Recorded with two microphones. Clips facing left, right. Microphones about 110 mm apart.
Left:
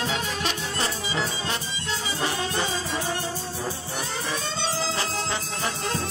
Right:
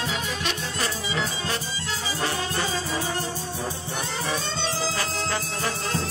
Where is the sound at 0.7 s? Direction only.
25° left (ahead or behind).